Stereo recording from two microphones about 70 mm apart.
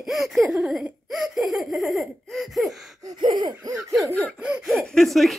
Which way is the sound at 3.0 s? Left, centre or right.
Right.